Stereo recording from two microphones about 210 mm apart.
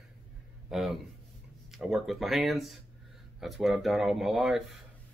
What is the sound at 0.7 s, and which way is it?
Speech, centre (ahead or behind).